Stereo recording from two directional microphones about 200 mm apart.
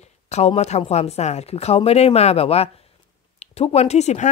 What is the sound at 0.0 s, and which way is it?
Speech, 35° left (ahead or behind).